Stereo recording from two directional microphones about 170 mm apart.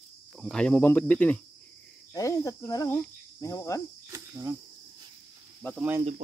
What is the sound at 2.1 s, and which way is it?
Cricket, 20° left (ahead or behind).